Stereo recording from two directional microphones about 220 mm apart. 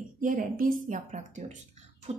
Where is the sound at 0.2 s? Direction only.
40° right (ahead or behind).